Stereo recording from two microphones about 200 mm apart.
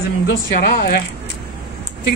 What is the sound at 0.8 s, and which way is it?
Speech, 50° left (ahead or behind).